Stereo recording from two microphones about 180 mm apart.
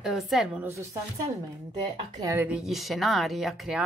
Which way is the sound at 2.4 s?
5° right (ahead or behind).